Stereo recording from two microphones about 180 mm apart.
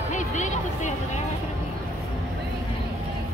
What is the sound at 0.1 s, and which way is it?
Music, 40° left (ahead or behind).